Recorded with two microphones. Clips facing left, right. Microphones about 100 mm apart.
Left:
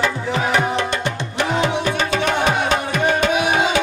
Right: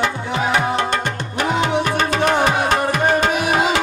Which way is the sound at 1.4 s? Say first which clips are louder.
Right 2 dB; 45° right (ahead or behind).